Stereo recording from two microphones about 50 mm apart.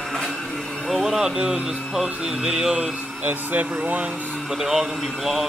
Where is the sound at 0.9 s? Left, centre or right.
Centre.